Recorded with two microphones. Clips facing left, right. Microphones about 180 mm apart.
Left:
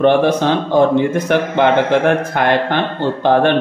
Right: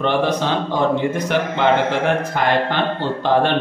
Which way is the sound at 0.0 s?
50° left (ahead or behind).